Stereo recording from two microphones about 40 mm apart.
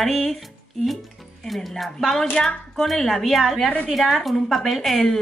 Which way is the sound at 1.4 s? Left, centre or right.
Centre.